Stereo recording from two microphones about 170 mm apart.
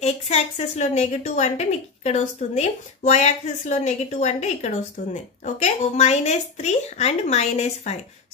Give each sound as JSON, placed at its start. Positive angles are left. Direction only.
{"t": 0.0, "sound": "a woman's voice", "side_deg": 40}